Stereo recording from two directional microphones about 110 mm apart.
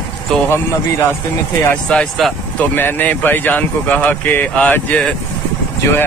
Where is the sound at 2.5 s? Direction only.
15° left (ahead or behind).